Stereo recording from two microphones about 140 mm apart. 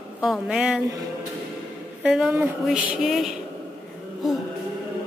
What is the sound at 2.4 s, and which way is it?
Speech, 5° right (ahead or behind).